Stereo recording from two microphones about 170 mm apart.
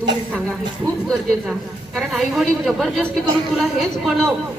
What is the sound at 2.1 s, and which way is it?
Speech, centre (ahead or behind).